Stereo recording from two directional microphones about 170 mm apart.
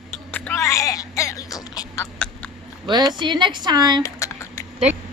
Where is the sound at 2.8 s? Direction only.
25° right (ahead or behind).